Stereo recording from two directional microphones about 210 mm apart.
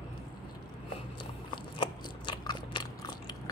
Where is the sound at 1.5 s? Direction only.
20° left (ahead or behind).